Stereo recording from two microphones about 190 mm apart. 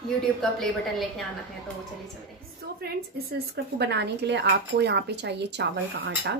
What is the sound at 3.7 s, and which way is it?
Speech, 60° right (ahead or behind).